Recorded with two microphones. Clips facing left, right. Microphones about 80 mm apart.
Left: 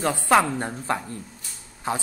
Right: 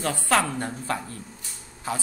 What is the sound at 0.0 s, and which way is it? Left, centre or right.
A man's voice, centre.